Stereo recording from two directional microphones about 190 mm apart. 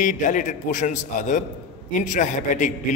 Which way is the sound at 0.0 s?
45° left (ahead or behind).